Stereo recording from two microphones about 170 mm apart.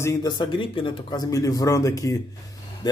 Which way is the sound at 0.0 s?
20° left (ahead or behind).